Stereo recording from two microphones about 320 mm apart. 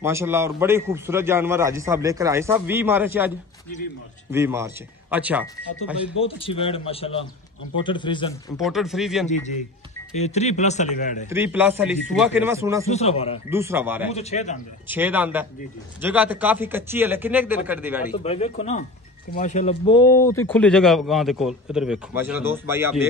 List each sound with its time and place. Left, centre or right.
0.0 s a man's voice: centre
6.1 s speech: centre
8.5 s speech: centre
10.1 s a man's voice: left
11.2 s a man's voice: centre
12.9 s a man's voice: centre
13.5 s a man's voice: centre
14.1 s a man's voice: left
14.9 s speech: centre
18.1 s a man's voice: centre